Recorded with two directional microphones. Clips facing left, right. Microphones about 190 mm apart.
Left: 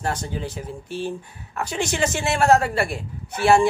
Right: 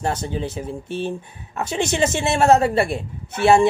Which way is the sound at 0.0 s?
25° right (ahead or behind).